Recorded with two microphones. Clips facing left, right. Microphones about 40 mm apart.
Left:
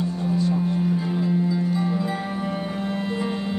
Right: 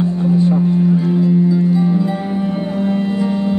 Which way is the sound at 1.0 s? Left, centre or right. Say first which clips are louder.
Right 9 dB; centre.